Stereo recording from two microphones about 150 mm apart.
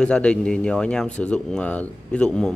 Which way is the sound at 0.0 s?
5° left (ahead or behind).